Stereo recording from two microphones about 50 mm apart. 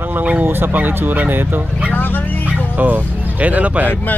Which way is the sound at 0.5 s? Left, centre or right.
Right.